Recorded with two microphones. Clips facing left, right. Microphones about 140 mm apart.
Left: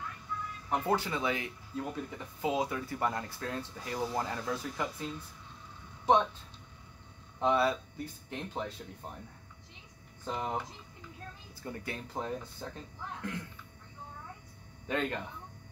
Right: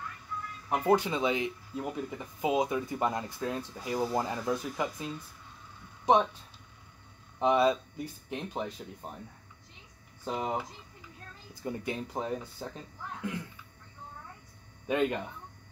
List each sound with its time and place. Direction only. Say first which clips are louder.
0.7 s speech: right 5 dB; 15° right (ahead or behind)
7.3 s speech: right 3 dB; 20° right (ahead or behind)
10.2 s speech: right 2 dB; 15° right (ahead or behind)
14.9 s speech: right 5 dB; 15° right (ahead or behind)